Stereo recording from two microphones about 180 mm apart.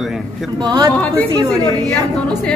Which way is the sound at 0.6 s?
20° right (ahead or behind).